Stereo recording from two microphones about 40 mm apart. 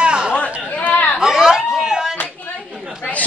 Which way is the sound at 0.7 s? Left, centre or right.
Left.